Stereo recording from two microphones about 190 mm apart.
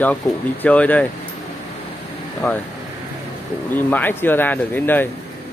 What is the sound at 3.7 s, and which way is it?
Speech, 10° left (ahead or behind).